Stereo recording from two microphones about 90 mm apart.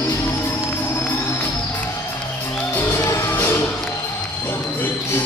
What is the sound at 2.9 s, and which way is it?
Music, 30° left (ahead or behind).